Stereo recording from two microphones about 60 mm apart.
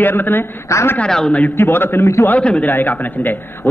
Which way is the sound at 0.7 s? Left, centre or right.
Left.